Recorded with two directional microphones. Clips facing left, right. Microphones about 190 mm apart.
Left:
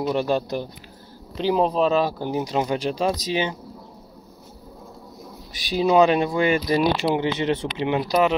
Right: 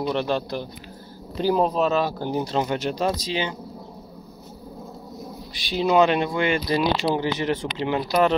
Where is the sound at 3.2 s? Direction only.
20° left (ahead or behind).